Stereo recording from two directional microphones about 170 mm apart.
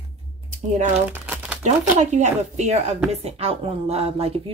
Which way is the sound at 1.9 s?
40° right (ahead or behind).